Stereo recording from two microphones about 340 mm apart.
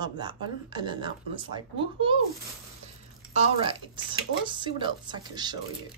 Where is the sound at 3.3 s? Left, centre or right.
Centre.